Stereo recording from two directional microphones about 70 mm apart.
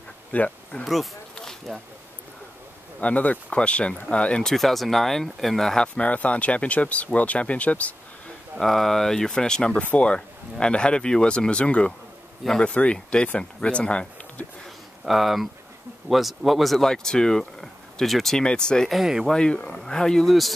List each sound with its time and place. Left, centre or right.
0.3 s speech: left
0.8 s speech: centre
3.0 s speech: centre
8.5 s speech: centre
15.0 s speech: centre
18.9 s speech: centre
19.3 s speech: centre